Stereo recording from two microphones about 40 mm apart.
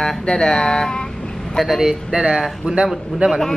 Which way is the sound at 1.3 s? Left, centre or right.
Centre.